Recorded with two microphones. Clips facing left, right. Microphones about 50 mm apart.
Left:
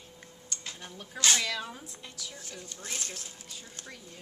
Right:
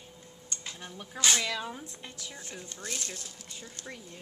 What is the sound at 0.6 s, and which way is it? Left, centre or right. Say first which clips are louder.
Speech: right 1 dB; centre.